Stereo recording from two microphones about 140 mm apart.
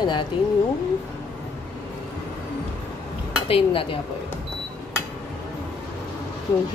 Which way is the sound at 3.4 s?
40° left (ahead or behind).